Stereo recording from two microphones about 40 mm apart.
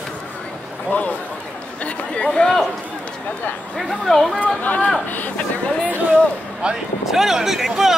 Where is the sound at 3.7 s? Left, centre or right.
Centre.